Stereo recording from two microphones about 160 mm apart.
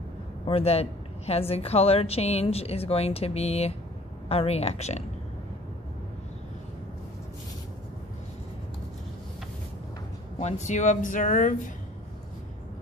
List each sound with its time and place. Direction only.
0.5 s a woman's voice: 40° left (ahead or behind)
10.4 s speech: 50° left (ahead or behind)